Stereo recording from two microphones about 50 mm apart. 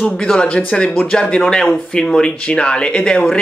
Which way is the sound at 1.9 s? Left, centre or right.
Centre.